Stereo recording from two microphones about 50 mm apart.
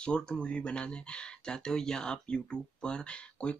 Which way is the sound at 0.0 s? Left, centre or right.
Centre.